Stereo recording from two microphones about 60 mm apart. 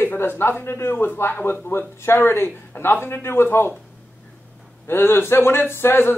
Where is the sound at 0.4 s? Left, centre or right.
Left.